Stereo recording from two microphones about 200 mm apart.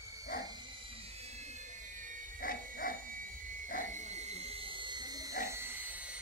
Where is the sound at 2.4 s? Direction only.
45° left (ahead or behind).